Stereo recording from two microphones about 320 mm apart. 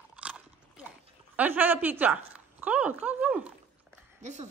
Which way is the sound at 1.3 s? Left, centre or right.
Centre.